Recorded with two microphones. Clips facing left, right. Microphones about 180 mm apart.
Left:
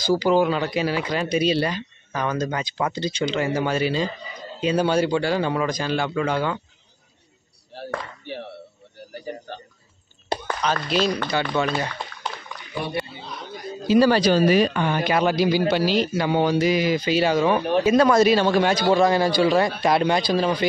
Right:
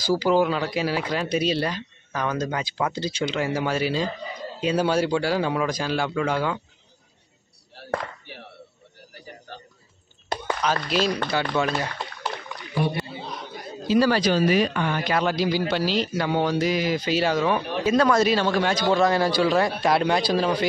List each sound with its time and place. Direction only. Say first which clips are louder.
0.0 s speech: left 2 dB; 5° right (ahead or behind)
8.3 s chop: left 10 dB; 30° left (ahead or behind)
10.6 s speech: left 1 dB; 5° right (ahead or behind)
13.8 s speech: left 3 dB; 25° left (ahead or behind)
15.0 s a man's voice: left 4 dB; 10° left (ahead or behind)
18.9 s speech: even; centre (ahead or behind)